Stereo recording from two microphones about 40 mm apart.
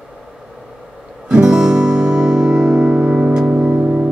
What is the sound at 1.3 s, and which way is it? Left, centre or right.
Music, centre.